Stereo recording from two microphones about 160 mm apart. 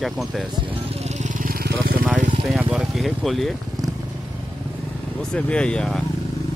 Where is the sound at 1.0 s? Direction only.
55° right (ahead or behind); by 2.0 s 70° right (ahead or behind).